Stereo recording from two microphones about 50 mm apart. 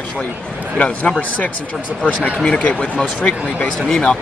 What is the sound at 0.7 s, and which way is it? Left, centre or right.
Speech, left.